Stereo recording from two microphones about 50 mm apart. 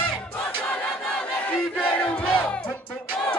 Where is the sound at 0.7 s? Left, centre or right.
Left.